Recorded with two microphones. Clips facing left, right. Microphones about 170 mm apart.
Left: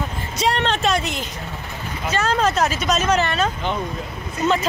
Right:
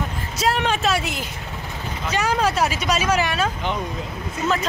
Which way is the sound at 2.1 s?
10° right (ahead or behind).